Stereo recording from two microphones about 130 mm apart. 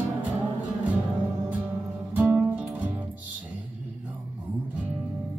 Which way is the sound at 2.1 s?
20° right (ahead or behind).